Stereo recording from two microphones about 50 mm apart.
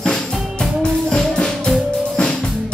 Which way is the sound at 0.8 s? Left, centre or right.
Centre.